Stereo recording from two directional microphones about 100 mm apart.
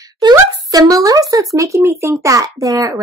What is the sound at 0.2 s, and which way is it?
Speech, 40° right (ahead or behind).